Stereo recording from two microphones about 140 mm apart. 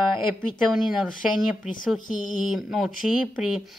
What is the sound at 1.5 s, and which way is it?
Speech, 5° right (ahead or behind).